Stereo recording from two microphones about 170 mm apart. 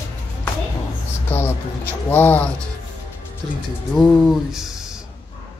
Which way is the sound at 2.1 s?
10° left (ahead or behind).